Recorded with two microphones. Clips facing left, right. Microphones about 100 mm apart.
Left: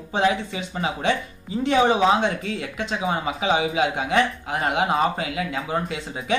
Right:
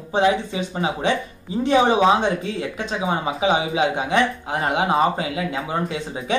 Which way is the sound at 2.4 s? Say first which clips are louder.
Right 2 dB; 25° right (ahead or behind).